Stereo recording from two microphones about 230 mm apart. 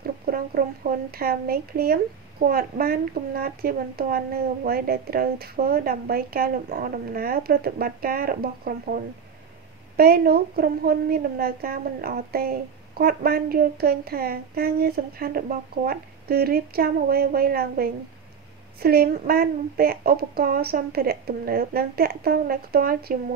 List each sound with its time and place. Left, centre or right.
0.0 s a woman's voice: right